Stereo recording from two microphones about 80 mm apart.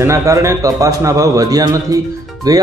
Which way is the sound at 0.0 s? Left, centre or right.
Right.